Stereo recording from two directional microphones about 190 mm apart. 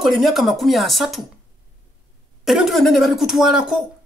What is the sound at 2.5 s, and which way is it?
A man's voice, centre (ahead or behind).